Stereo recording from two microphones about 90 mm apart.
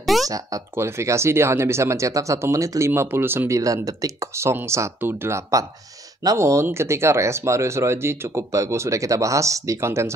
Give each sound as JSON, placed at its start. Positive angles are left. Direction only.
{"t": 0.0, "sound": "a sound", "side_deg": 0}
{"t": 0.3, "sound": "speech", "side_deg": -35}
{"t": 2.9, "sound": "speech", "side_deg": -25}